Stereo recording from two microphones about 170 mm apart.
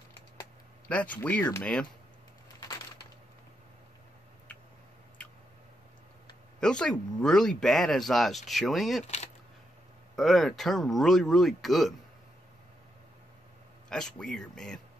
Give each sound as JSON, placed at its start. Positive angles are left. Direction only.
{"t": 0.8, "sound": "speech", "side_deg": 10}
{"t": 6.6, "sound": "speech", "side_deg": 5}
{"t": 9.0, "sound": "speech", "side_deg": 40}
{"t": 10.1, "sound": "speech", "side_deg": 0}
{"t": 13.8, "sound": "speech", "side_deg": 5}